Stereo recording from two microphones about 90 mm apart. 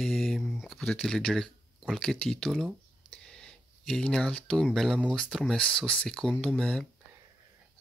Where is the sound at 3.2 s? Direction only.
5° left (ahead or behind).